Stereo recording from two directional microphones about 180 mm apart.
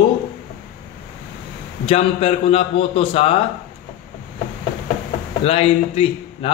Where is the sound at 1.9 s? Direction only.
35° left (ahead or behind).